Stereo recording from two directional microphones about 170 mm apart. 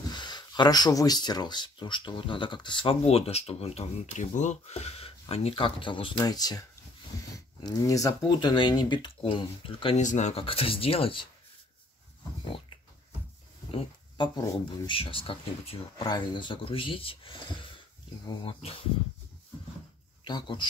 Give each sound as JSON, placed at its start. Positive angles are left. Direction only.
{"t": 0.1, "sound": "speech", "side_deg": 25}
{"t": 7.6, "sound": "speech", "side_deg": 20}
{"t": 10.0, "sound": "speech", "side_deg": 45}
{"t": 13.7, "sound": "a sound", "side_deg": 30}
{"t": 14.9, "sound": "speech", "side_deg": 30}
{"t": 20.2, "sound": "speech", "side_deg": 25}